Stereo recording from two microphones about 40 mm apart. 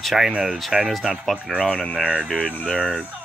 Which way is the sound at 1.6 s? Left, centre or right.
Left.